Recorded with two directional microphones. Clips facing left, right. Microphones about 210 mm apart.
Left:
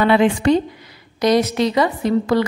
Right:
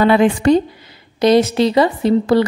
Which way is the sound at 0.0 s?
40° right (ahead or behind).